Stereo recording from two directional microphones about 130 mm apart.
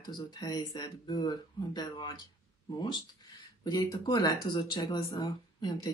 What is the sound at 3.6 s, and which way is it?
Speech, 30° left (ahead or behind).